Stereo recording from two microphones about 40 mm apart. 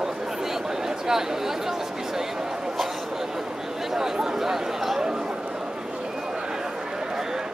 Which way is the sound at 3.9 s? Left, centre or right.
Centre.